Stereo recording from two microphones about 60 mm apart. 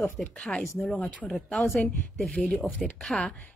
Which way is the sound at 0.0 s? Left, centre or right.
Centre.